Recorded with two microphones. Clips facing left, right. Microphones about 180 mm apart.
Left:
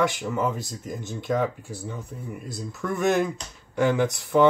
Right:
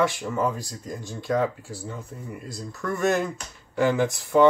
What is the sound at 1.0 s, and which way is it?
Speech, 20° left (ahead or behind).